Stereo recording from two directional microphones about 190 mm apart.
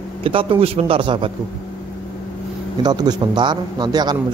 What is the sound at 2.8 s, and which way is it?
Speech, 20° right (ahead or behind).